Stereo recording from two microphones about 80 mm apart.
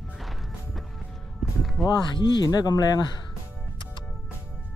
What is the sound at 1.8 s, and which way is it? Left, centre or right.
Speech, left.